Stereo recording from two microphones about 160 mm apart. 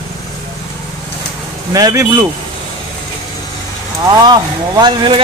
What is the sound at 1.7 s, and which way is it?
Speech, 20° right (ahead or behind).